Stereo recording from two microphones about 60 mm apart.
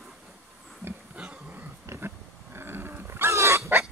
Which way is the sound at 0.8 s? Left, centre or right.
Right.